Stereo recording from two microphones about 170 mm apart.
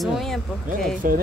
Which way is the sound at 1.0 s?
55° right (ahead or behind).